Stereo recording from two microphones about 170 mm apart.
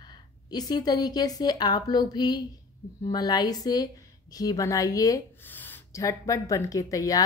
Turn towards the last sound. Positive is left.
turn(degrees=20)  # may be behind; listen again after turning